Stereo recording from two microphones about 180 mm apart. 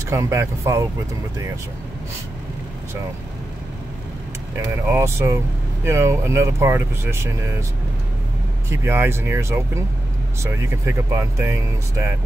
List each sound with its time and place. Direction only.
0.1 s speech: 15° right (ahead or behind)
4.8 s speech: 15° right (ahead or behind)
8.6 s speech: 15° right (ahead or behind)